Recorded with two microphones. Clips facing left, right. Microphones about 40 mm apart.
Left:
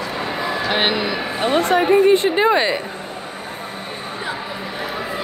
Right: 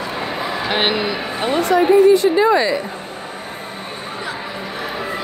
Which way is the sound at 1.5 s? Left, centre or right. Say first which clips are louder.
Right 2 dB; left.